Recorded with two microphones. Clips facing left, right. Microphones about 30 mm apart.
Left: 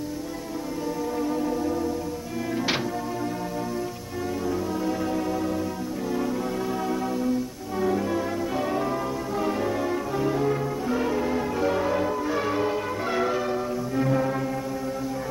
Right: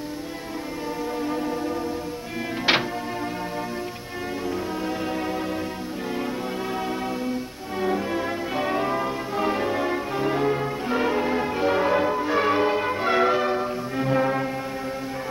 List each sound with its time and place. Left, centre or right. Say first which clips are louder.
1.2 s music: left 2 dB; right
4.5 s music: left 1 dB; right